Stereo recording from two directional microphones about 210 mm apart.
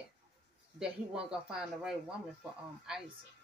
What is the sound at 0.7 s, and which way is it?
Speech, 5° right (ahead or behind).